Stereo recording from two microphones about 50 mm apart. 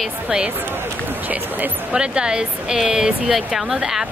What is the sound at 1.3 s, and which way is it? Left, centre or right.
Speech, right.